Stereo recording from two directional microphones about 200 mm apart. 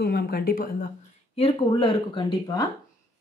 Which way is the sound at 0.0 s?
50° left (ahead or behind).